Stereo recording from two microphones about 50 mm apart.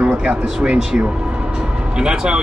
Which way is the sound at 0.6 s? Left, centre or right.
Centre.